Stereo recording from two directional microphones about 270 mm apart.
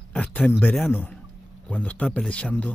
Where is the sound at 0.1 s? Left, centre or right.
Centre.